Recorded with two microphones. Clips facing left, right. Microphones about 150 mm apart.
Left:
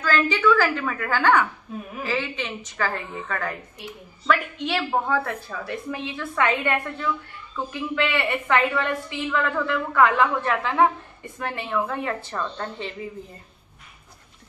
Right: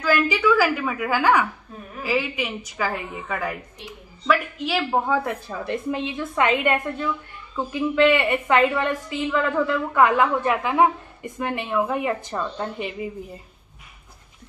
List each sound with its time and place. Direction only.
0.0 s a woman's voice: 10° right (ahead or behind)
5.5 s a woman's voice: 25° right (ahead or behind)